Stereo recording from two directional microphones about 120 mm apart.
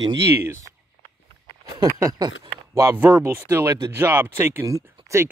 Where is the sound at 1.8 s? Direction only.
30° right (ahead or behind).